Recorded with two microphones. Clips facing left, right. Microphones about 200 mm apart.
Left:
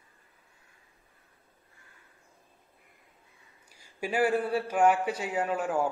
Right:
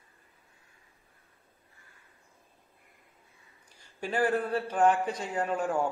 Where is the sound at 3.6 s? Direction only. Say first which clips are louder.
Left 2 dB; 10° left (ahead or behind).